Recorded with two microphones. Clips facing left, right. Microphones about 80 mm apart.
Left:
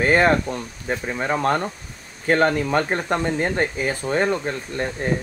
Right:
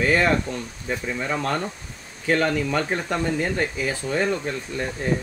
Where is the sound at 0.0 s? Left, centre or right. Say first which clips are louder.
Left 3 dB; left.